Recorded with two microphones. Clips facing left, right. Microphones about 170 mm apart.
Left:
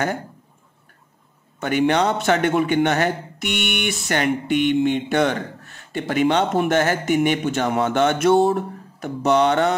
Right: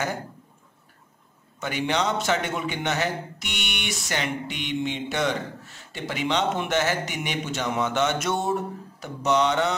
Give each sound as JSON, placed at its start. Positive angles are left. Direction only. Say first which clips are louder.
{"t": 1.6, "sound": "a man's voice", "louder": "left 7 dB", "side_deg": 55}